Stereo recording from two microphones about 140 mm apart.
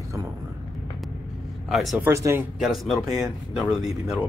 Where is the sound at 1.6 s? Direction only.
Centre (ahead or behind).